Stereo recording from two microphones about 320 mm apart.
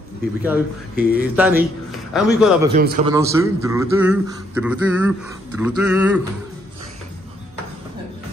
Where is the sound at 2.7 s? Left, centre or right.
Right.